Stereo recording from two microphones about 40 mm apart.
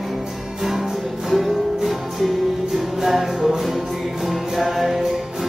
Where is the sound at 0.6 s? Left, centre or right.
Centre.